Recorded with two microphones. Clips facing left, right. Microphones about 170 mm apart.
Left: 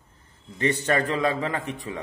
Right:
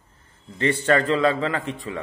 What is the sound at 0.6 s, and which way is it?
A man's voice, 15° left (ahead or behind).